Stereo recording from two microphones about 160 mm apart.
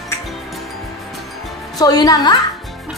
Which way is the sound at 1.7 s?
25° left (ahead or behind).